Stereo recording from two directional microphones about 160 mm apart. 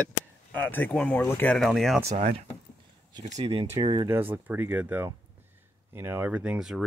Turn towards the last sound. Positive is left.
turn(degrees=-5)  # may be behind; listen again after turning